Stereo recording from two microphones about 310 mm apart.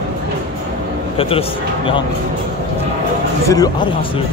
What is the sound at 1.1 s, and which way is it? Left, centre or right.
Speech, centre.